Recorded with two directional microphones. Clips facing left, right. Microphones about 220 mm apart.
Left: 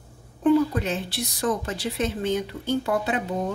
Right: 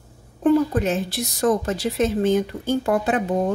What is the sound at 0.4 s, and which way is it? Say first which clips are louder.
A woman's voice: right 2 dB; 45° right (ahead or behind).